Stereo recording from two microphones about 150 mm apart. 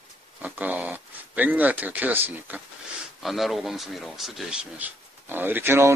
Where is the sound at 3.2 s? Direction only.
Centre (ahead or behind).